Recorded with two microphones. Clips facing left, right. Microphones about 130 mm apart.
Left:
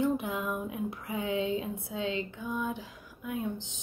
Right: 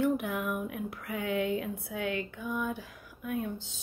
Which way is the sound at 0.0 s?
20° left (ahead or behind).